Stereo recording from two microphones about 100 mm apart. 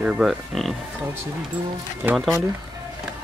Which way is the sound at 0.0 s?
10° right (ahead or behind).